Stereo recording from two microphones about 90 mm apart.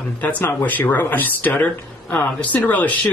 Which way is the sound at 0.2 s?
20° left (ahead or behind).